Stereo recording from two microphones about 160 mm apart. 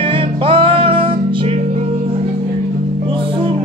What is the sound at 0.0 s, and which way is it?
Music, 35° right (ahead or behind).